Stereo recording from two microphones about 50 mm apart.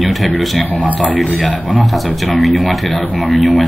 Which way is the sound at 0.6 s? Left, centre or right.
Left.